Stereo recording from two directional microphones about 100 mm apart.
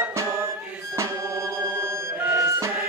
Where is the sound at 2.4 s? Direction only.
30° right (ahead or behind).